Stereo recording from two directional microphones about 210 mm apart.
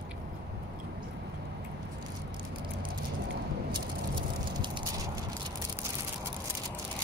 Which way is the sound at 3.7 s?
20° right (ahead or behind).